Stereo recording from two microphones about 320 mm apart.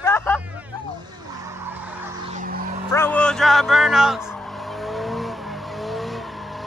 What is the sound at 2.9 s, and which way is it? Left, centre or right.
Music, centre.